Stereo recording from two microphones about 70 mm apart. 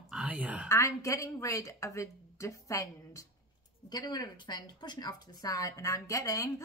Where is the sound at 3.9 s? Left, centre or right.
Left.